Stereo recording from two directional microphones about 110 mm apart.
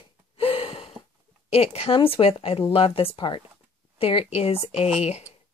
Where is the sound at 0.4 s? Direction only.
60° left (ahead or behind).